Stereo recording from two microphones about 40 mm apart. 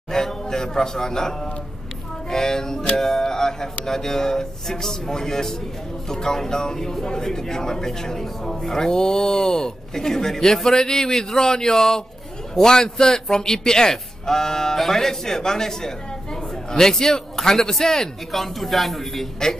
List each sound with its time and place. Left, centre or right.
0.1 s a man's voice: centre